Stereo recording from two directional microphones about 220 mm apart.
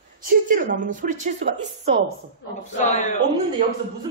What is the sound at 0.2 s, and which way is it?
A woman's voice, 40° right (ahead or behind).